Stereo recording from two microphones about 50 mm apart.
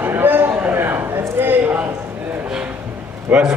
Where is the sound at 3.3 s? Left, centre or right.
Right.